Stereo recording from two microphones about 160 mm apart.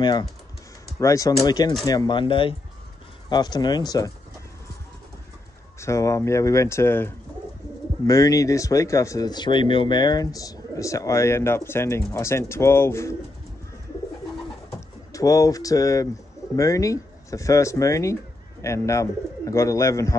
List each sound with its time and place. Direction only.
0.0 s speech: 25° left (ahead or behind)
5.8 s speech: 20° left (ahead or behind)
15.1 s speech: 20° left (ahead or behind)